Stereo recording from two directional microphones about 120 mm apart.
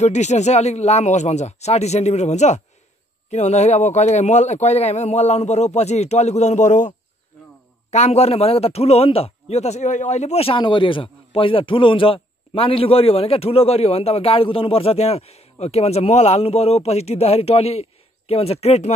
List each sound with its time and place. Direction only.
0.0 s a man's voice: 75° left (ahead or behind); by 7.0 s 90° left
7.9 s a man's voice: 65° left (ahead or behind)